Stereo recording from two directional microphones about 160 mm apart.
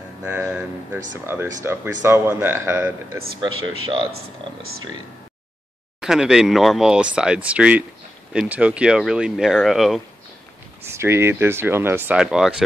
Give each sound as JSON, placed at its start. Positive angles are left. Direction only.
{"t": 0.2, "sound": "speech", "side_deg": -10}
{"t": 3.3, "sound": "speech", "side_deg": -30}
{"t": 5.9, "sound": "speech", "side_deg": -5}
{"t": 10.9, "sound": "speech", "side_deg": -15}